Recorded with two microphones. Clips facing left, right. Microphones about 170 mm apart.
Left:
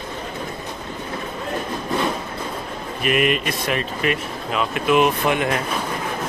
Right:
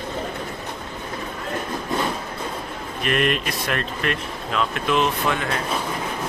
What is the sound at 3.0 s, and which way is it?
Speech, 5° left (ahead or behind).